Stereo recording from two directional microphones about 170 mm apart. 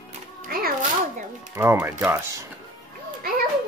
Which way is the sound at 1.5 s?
15° right (ahead or behind).